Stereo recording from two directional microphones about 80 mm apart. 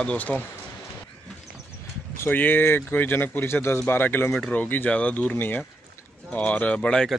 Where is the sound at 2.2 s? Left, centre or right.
Left.